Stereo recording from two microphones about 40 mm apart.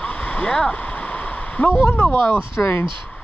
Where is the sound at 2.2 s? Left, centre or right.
Left.